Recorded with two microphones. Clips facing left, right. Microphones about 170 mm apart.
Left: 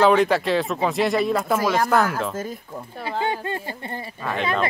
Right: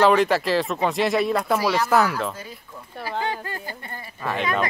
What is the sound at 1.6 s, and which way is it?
Speech, 50° left (ahead or behind).